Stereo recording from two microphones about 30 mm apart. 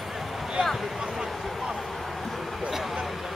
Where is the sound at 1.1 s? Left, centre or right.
Centre.